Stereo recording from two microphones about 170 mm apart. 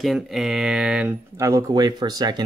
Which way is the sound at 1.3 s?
20° right (ahead or behind).